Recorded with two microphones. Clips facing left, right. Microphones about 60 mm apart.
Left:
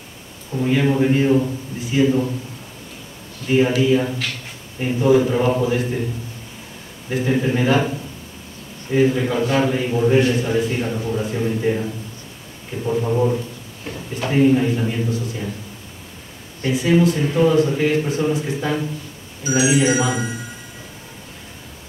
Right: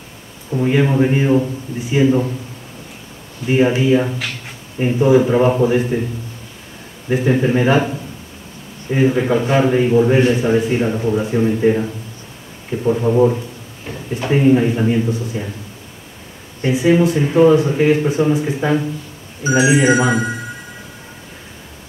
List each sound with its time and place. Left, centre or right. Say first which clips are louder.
0.6 s a man's voice: right 3 dB; centre
3.4 s a man's voice: right 2 dB; right
7.1 s a man's voice: right 4 dB; centre
8.9 s a man's voice: right 2 dB; centre
16.6 s a man's voice: right 3 dB; centre
19.6 s a man's voice: right 4 dB; right